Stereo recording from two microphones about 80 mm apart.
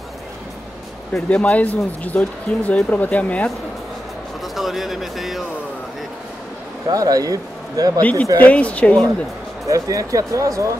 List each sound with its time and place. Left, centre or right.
1.3 s speech: centre
4.6 s speech: centre
6.9 s speech: right
8.0 s speech: centre
9.7 s speech: right